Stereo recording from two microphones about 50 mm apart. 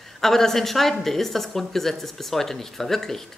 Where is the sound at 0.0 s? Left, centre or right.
Centre.